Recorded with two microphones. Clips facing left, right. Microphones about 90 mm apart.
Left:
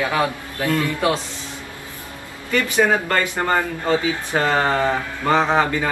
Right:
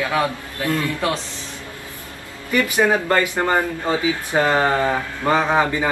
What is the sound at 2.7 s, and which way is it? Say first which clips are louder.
Speech: even; 15° right (ahead or behind).